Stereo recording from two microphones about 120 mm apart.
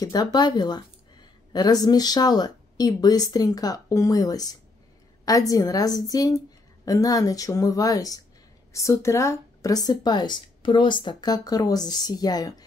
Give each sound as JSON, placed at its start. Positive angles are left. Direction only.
{"t": 0.0, "sound": "a woman's voice", "side_deg": 30}